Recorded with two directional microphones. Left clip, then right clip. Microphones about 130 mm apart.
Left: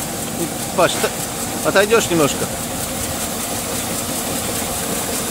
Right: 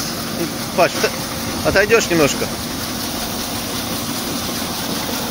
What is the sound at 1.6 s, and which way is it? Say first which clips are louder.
Speech: even; 15° left (ahead or behind).